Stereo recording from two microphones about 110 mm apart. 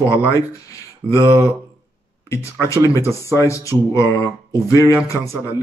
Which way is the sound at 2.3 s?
25° left (ahead or behind).